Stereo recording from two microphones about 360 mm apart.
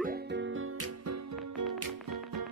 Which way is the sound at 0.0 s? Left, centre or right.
Right.